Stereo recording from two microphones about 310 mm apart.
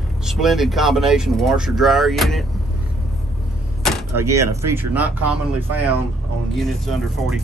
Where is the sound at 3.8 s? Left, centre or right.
Centre.